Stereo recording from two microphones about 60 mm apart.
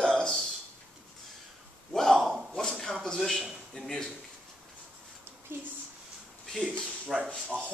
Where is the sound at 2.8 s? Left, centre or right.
Centre.